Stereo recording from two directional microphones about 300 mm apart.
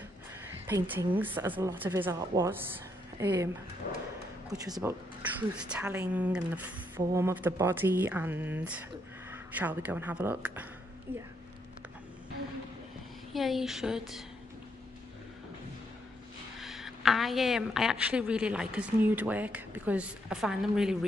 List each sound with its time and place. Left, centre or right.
0.7 s a woman's voice: centre
4.5 s a woman's voice: centre
11.1 s speech: right
13.3 s a woman's voice: centre
16.5 s a woman's voice: centre